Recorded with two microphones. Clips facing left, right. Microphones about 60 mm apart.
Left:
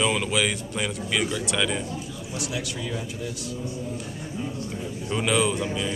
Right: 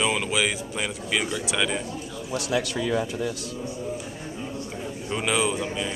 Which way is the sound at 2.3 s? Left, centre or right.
Right.